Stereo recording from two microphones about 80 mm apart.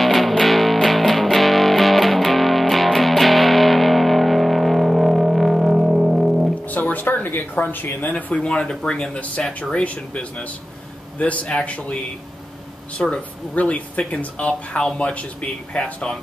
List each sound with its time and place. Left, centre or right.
0.0 s music: centre
6.6 s speech: left